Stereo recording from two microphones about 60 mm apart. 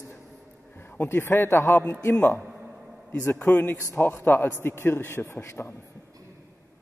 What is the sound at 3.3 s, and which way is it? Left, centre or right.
A man's voice, left.